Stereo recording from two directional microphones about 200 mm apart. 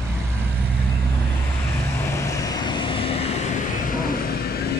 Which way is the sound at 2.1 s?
15° left (ahead or behind).